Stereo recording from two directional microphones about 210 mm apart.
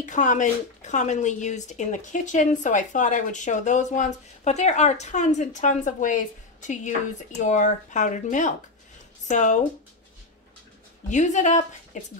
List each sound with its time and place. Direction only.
0.0 s speech: 35° left (ahead or behind)
11.1 s speech: 35° left (ahead or behind)